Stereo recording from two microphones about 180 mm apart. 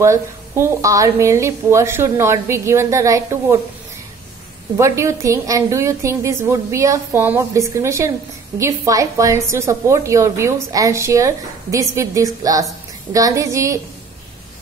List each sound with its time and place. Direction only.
0.0 s a woman's voice: 15° right (ahead or behind)
4.7 s a woman's voice: 15° right (ahead or behind)